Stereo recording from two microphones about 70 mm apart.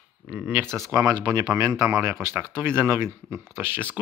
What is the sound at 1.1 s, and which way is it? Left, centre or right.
Speech, right.